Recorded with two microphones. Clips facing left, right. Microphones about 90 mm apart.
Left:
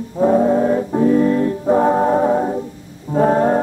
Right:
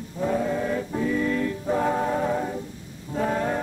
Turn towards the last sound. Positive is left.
turn(degrees=40)  # may be behind; listen again after turning